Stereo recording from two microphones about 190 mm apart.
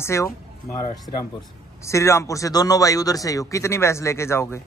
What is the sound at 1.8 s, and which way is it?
Speech, 15° left (ahead or behind).